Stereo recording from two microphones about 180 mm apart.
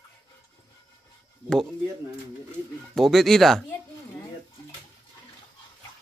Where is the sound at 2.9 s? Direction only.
Centre (ahead or behind).